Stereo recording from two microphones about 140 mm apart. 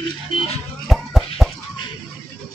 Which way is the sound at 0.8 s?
Centre (ahead or behind).